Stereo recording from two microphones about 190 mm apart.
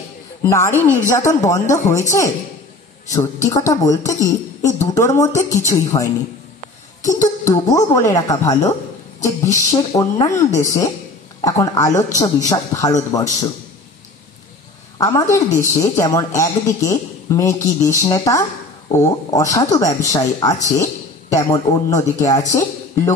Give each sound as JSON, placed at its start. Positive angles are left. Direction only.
{"t": 0.4, "sound": "speech", "side_deg": 15}
{"t": 7.4, "sound": "speech", "side_deg": 15}
{"t": 15.0, "sound": "speech", "side_deg": 15}